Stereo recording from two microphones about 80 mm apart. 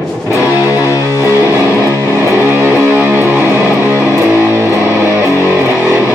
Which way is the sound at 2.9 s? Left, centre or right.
Right.